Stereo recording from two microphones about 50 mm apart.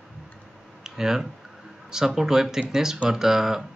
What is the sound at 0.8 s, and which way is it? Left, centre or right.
Clicking, centre.